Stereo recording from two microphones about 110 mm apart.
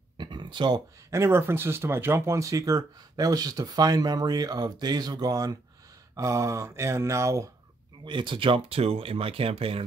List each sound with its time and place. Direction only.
0.2 s speech: 45° right (ahead or behind)
1.1 s speech: 25° right (ahead or behind)
6.1 s a sound: 30° right (ahead or behind)
8.0 s speech: 45° right (ahead or behind)